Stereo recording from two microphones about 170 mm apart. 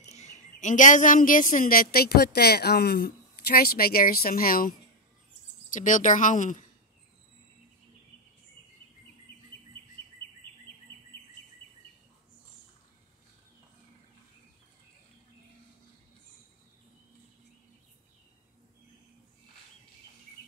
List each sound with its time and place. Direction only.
0.0 s speech: 40° left (ahead or behind)